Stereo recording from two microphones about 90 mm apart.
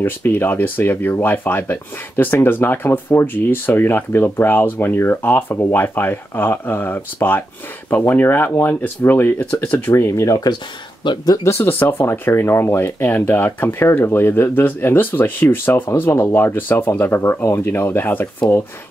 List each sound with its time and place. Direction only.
0.0 s speech: 20° left (ahead or behind)
11.0 s speech: 60° left (ahead or behind)
11.4 s speech: 25° left (ahead or behind)